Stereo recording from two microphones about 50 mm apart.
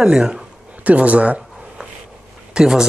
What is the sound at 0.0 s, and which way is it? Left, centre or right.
Speech, centre.